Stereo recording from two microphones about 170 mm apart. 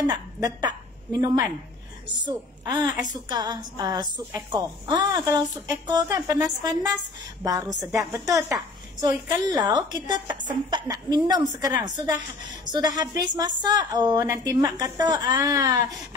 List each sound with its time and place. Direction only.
0.0 s a woman's voice: 25° right (ahead or behind)
5.1 s a woman's voice: 15° right (ahead or behind)
12.7 s a woman's voice: 25° right (ahead or behind)